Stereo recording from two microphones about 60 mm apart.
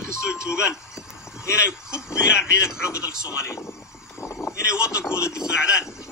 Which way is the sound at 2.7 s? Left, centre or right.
Left.